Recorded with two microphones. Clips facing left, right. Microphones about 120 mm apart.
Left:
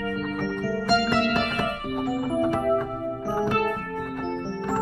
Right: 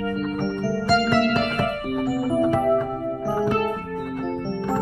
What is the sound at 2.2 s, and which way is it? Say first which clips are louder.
Music: right 4 dB; 10° right (ahead or behind).